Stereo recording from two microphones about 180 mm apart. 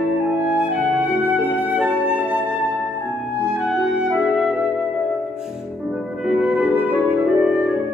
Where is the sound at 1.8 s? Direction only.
10° right (ahead or behind).